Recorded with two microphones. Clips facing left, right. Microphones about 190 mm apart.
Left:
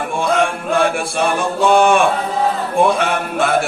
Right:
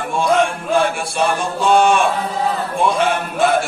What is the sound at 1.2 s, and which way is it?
Chant, 55° left (ahead or behind).